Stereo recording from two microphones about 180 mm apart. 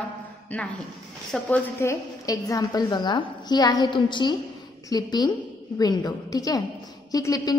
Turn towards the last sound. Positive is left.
turn(degrees=20)  # may be behind; listen again after turning